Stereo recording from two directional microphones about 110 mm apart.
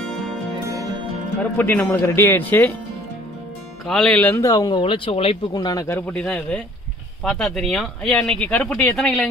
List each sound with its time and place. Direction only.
0.7 s music: 30° right (ahead or behind)
1.6 s speech: 15° left (ahead or behind)
3.8 s speech: 5° left (ahead or behind)
4.3 s speech: 35° left (ahead or behind); by 5.4 s 60° left (ahead or behind)
5.5 s speech: 35° left (ahead or behind)
5.9 s speech: 20° left (ahead or behind); by 8.5 s 5° left (ahead or behind)
8.5 s speech: 15° left (ahead or behind)
8.8 s speech: 5° left (ahead or behind)